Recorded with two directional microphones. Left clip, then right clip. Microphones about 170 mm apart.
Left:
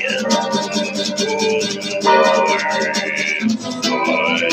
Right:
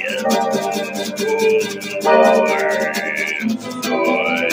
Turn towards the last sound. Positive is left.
turn(degrees=20)  # may be behind; listen again after turning